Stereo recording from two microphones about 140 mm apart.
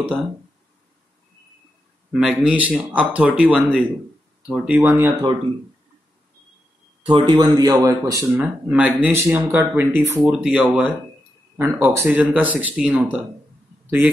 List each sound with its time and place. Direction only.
2.1 s speech: 5° right (ahead or behind)
7.1 s speech: 35° right (ahead or behind)
8.6 s a man's voice: 10° right (ahead or behind)